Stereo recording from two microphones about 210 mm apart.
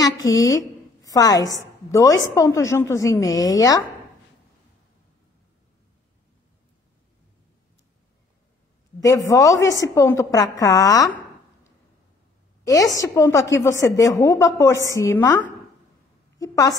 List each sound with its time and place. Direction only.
0.0 s a woman's voice: 15° left (ahead or behind)
9.0 s a woman's voice: 15° left (ahead or behind)
12.6 s a woman's voice: 15° left (ahead or behind)